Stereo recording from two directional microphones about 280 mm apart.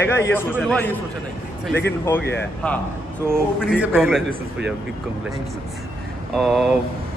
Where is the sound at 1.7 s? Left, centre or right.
Left.